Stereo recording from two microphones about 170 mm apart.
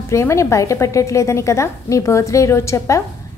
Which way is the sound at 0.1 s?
15° left (ahead or behind).